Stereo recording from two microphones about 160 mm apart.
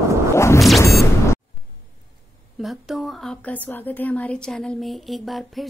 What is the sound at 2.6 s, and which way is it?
A woman's voice, centre (ahead or behind).